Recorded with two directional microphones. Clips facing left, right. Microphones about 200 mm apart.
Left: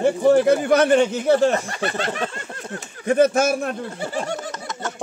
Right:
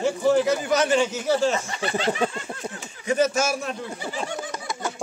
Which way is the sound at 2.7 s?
55° left (ahead or behind).